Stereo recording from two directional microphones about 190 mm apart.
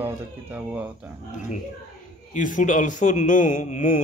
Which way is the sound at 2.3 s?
45° left (ahead or behind).